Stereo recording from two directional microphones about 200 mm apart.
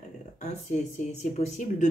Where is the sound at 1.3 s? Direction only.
35° left (ahead or behind).